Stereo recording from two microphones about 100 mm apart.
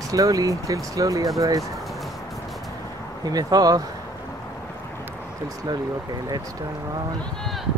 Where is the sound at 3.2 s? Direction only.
40° right (ahead or behind).